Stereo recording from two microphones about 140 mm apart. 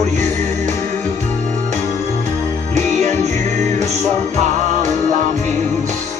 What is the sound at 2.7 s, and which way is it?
Music, 55° right (ahead or behind).